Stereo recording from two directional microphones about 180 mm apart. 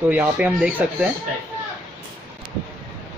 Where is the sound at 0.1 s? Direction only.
10° right (ahead or behind).